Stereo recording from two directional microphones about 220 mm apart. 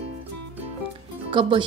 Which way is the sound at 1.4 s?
25° right (ahead or behind).